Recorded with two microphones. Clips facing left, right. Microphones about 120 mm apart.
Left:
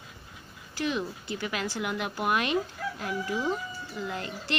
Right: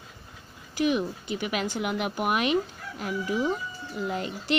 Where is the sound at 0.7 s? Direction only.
15° right (ahead or behind).